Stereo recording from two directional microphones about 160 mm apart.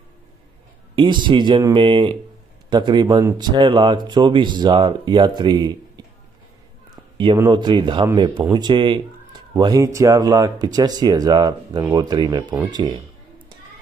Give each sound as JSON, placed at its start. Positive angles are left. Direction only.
{"t": 0.9, "sound": "speech", "side_deg": -30}
{"t": 7.4, "sound": "speech", "side_deg": -30}